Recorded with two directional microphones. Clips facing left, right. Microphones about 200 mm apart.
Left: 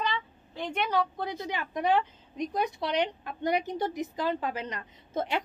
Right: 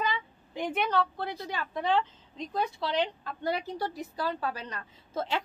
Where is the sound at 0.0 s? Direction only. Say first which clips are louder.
Even; 10° right (ahead or behind).